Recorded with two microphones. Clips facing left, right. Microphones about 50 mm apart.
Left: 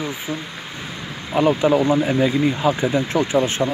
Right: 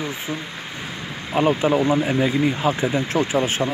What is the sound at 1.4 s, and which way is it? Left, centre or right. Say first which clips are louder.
Speech: left 2 dB; right.